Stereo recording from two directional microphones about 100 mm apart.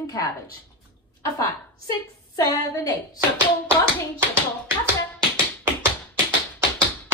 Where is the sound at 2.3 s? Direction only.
35° left (ahead or behind).